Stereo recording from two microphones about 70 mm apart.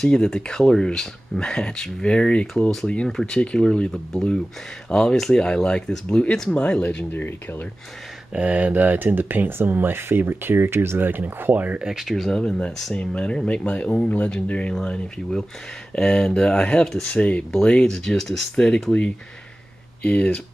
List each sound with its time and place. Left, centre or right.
0.0 s speech: centre; by 7.6 s left
8.3 s speech: centre
11.8 s speech: centre
12.3 s speech: centre
15.9 s speech: centre